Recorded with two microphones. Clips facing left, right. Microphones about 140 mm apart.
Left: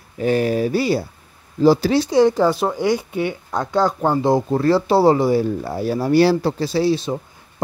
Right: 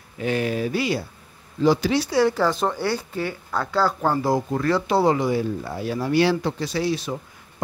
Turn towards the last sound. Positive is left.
turn(degrees=25)  # may be behind; listen again after turning